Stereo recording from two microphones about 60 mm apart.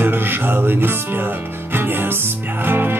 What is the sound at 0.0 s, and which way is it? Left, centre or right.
Music, right.